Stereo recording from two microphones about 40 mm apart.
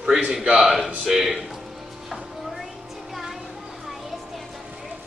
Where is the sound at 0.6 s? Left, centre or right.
Centre.